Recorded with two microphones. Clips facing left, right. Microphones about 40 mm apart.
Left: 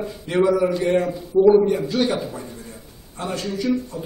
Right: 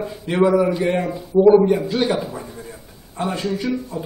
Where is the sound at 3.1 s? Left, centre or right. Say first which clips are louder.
Right 3 dB; centre.